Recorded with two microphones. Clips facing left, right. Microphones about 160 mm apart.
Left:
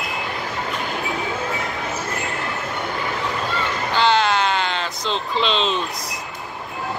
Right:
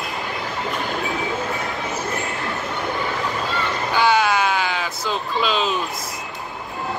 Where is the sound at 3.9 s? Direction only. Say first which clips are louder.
Even; 10° right (ahead or behind).